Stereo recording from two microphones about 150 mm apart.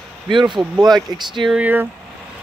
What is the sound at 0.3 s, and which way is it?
Speech, 30° right (ahead or behind).